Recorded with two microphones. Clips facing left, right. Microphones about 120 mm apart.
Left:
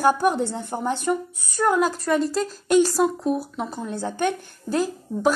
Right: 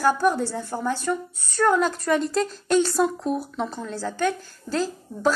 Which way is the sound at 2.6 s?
10° left (ahead or behind).